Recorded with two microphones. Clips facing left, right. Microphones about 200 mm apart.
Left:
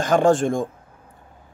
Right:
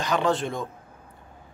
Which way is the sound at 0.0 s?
50° left (ahead or behind).